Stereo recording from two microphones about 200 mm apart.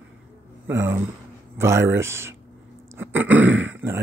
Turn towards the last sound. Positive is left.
turn(degrees=-10)  # may be behind; listen again after turning